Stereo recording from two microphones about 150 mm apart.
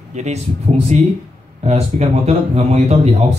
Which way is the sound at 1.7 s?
45° right (ahead or behind).